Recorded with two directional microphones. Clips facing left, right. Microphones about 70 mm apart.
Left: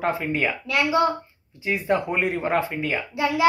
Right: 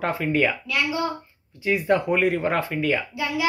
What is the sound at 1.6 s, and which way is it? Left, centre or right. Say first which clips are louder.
Speech: right 2 dB; centre.